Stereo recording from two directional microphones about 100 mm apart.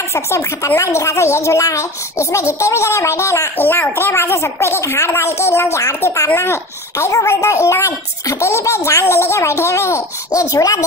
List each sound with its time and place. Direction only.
0.1 s a child's voice: 30° left (ahead or behind)